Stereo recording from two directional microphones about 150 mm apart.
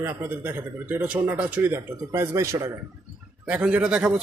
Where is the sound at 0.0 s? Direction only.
15° right (ahead or behind).